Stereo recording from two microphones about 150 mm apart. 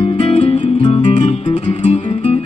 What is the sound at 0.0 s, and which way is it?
Music, 40° left (ahead or behind).